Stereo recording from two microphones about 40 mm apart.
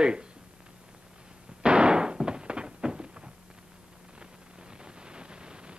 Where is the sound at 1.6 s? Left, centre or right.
Right.